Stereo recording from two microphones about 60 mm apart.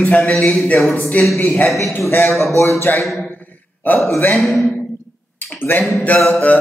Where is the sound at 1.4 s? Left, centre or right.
Left.